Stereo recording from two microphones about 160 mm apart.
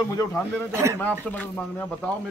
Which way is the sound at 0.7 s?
20° right (ahead or behind).